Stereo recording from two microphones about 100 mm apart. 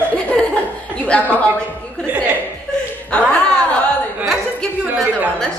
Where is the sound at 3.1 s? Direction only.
10° left (ahead or behind).